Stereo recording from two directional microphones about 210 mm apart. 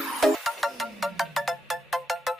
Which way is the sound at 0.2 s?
Centre (ahead or behind).